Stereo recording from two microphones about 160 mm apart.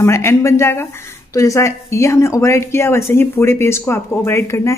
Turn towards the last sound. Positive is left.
turn(degrees=15)  # may be behind; listen again after turning